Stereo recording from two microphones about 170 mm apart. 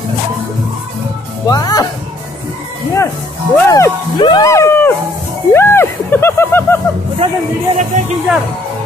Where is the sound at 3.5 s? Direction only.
15° left (ahead or behind).